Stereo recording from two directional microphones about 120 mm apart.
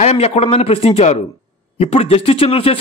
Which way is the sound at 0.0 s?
60° left (ahead or behind).